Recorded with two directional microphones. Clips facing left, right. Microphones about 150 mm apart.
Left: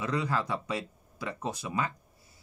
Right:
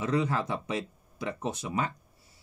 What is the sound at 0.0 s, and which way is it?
Speech, 25° right (ahead or behind).